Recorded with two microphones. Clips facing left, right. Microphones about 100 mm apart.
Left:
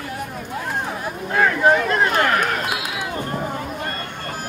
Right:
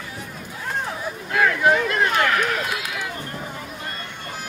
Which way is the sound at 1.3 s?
35° left (ahead or behind).